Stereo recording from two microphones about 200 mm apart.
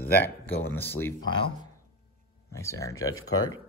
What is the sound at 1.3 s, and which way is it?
Speech, 25° left (ahead or behind).